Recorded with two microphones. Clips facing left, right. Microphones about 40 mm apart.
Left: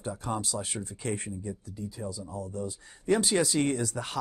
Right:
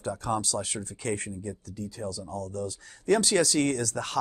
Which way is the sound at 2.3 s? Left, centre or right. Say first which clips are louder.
Right 2 dB; left.